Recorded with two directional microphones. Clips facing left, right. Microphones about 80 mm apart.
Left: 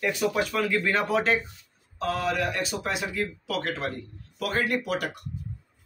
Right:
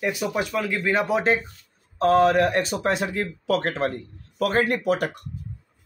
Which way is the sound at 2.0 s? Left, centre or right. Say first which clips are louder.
Right 10 dB; right.